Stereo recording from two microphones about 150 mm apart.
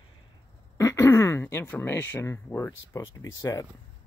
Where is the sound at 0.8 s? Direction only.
20° left (ahead or behind).